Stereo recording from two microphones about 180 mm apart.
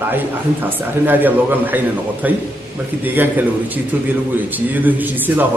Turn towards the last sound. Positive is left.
turn(degrees=-10)  # may be behind; listen again after turning